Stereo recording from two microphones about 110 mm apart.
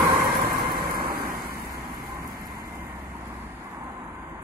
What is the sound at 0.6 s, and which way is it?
Vehicle, 40° right (ahead or behind).